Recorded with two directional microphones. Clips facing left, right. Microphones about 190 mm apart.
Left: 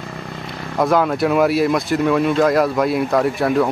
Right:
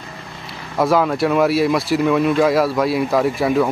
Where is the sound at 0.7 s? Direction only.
Centre (ahead or behind).